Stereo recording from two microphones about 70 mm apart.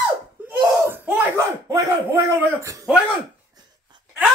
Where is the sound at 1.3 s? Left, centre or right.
Right.